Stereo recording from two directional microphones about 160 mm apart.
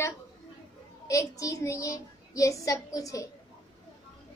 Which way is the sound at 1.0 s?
20° left (ahead or behind).